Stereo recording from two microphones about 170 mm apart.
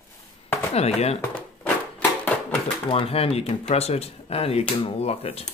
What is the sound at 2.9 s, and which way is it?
Speech, 35° left (ahead or behind).